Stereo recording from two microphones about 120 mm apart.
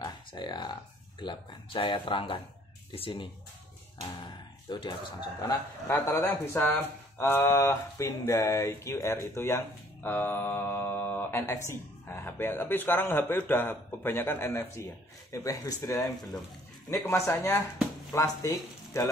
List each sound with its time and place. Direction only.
0.0 s a sound: 40° left (ahead or behind)
1.2 s speech: 40° left (ahead or behind)
5.4 s speech: 25° left (ahead or behind)